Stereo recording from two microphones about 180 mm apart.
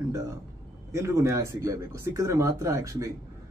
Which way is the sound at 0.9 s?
15° right (ahead or behind).